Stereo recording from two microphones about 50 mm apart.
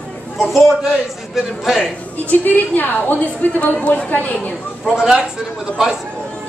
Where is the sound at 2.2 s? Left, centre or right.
Left.